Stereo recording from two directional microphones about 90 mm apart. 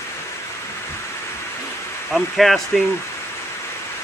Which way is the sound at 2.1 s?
Centre (ahead or behind).